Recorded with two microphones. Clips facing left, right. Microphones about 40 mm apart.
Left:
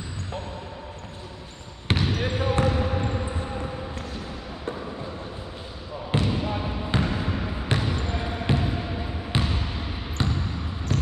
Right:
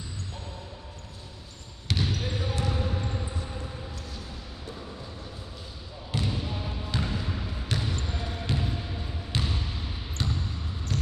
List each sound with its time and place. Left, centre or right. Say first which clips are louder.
1.9 s basketball bounce: left 5 dB; left
6.3 s basketball bounce: left 6 dB; left
10.2 s basketball bounce: left 5 dB; centre